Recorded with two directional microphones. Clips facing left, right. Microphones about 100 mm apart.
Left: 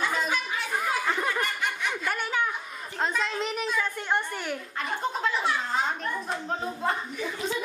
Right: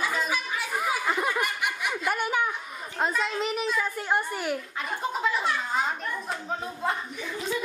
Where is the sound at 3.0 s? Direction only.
5° right (ahead or behind).